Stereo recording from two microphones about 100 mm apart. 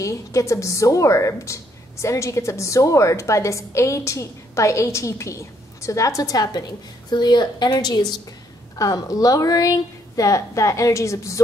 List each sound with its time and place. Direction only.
0.0 s a woman's voice: 30° left (ahead or behind)